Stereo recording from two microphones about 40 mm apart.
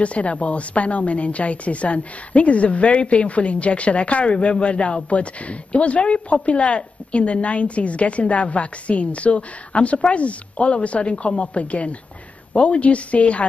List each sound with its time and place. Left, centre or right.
0.0 s a woman's voice: left